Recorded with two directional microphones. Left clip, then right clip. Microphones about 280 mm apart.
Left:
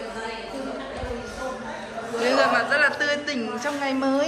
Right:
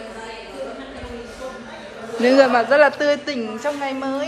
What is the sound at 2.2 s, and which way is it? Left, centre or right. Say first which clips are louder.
A woman's voice: right 6 dB; centre.